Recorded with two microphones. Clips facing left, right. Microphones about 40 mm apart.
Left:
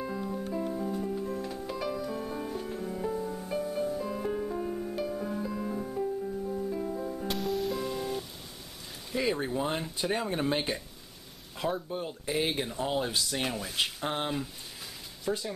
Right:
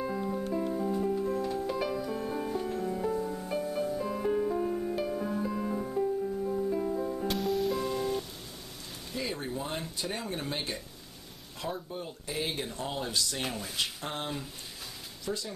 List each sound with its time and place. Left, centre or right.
0.0 s music: centre
9.1 s a sound: centre
9.6 s speech: centre
11.9 s speech: centre